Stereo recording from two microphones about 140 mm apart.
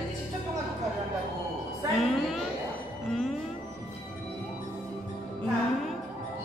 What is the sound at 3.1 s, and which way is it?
Music, centre (ahead or behind).